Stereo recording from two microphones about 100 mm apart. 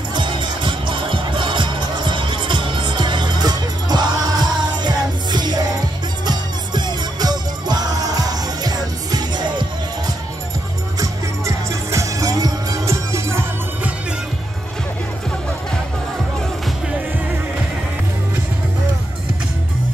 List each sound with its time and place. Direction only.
0.1 s music: 50° right (ahead or behind)
11.0 s music: 30° right (ahead or behind)